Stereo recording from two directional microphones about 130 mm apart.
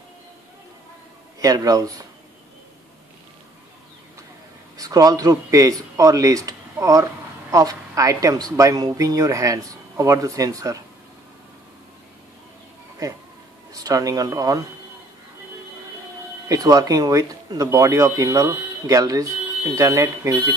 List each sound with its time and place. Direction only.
1.4 s speech: 30° right (ahead or behind)
4.7 s speech: 25° right (ahead or behind)
13.7 s speech: 25° right (ahead or behind)
16.4 s speech: 25° right (ahead or behind)